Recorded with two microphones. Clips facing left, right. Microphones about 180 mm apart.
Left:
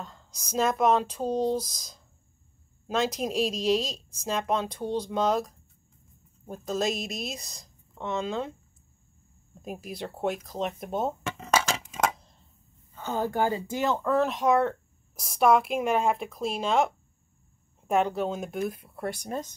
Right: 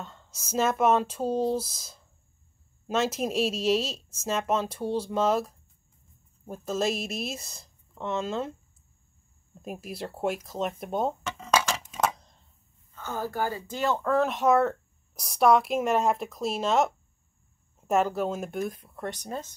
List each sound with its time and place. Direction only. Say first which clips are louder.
0.0 s speech: even; centre (ahead or behind)
9.6 s speech: even; centre (ahead or behind)
12.9 s speech: left 4 dB; 15° left (ahead or behind)
14.0 s speech: right 2 dB; centre (ahead or behind)